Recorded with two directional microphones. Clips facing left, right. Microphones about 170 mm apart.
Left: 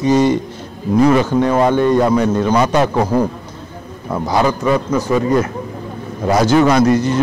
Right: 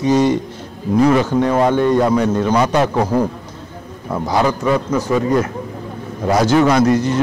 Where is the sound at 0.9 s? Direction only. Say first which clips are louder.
Left 1 dB; 25° left (ahead or behind).